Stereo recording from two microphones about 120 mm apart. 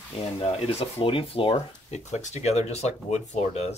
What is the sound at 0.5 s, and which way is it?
Speech, 50° left (ahead or behind).